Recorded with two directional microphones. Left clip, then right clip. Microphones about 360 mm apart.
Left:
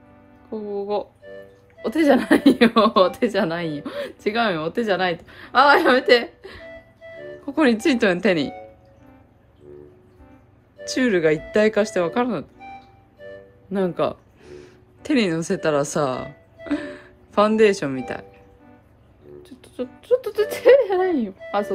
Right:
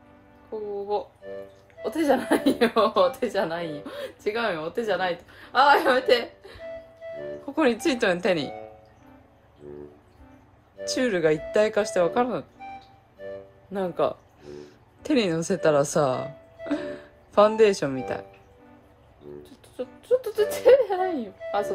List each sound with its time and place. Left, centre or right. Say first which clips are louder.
1.2 s speech: right 2 dB; centre
1.8 s speech: left 5 dB; centre
6.7 s music: right 3 dB; centre
7.5 s speech: left 4 dB; centre
9.7 s music: right 1 dB; centre
10.8 s speech: left 4 dB; centre
13.2 s music: right 2 dB; centre
13.7 s speech: left 3 dB; centre
20.1 s speech: left 3 dB; centre
21.4 s a sound: left 2 dB; centre